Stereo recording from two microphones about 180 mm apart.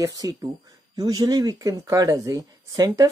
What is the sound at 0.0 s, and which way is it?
Speech, 20° right (ahead or behind).